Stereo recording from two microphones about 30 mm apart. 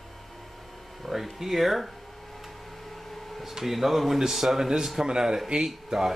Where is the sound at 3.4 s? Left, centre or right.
Centre.